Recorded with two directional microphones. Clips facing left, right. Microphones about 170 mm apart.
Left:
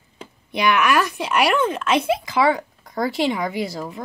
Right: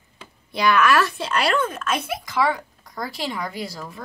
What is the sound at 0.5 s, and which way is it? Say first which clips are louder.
Speech: even; 20° left (ahead or behind).